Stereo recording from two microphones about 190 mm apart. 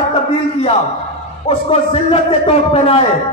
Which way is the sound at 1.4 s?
30° left (ahead or behind).